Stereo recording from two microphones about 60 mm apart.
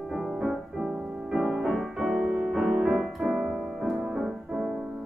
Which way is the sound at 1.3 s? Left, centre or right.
Centre.